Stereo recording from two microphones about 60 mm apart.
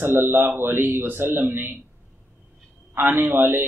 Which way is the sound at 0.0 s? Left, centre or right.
Right.